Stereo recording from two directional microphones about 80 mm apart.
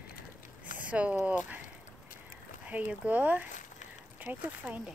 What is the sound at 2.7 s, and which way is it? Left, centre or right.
Speech, centre.